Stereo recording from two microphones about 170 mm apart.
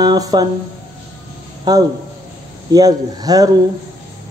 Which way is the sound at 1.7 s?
25° right (ahead or behind).